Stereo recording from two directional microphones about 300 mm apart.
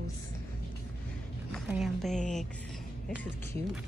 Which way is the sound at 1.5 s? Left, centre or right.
Centre.